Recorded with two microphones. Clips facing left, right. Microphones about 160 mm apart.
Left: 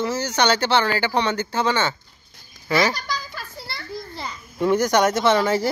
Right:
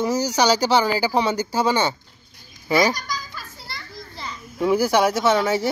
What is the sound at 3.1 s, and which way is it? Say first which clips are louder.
Children playing: left 2 dB; 65° left (ahead or behind).